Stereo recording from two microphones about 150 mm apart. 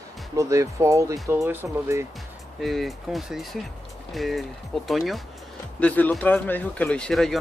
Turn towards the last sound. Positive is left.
turn(degrees=5)  # may be behind; listen again after turning